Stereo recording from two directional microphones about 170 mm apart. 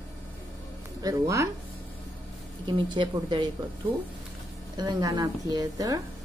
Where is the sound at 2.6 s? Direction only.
25° right (ahead or behind).